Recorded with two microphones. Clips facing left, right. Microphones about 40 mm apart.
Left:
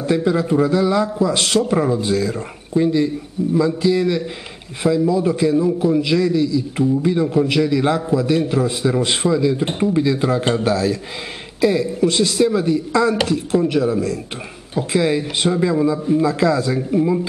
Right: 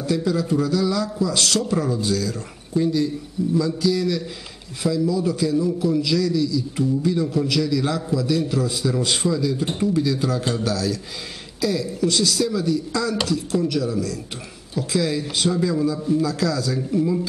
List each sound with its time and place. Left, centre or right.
0.0 s a man's voice: left